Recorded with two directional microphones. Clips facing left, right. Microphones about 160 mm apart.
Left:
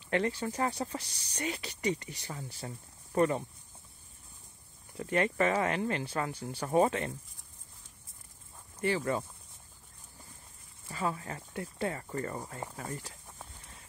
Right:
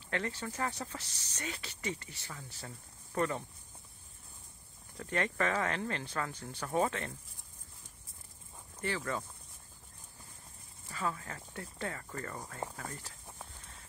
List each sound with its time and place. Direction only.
0.1 s speech: 15° left (ahead or behind)
4.9 s speech: 10° left (ahead or behind)
8.8 s speech: 20° left (ahead or behind)
10.9 s speech: 20° left (ahead or behind)